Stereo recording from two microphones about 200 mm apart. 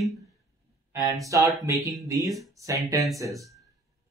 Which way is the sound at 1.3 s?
15° right (ahead or behind).